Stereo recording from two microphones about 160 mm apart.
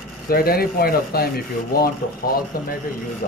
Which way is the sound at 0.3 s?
70° left (ahead or behind).